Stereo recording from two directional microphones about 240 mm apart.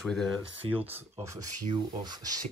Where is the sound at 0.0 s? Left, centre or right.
Centre.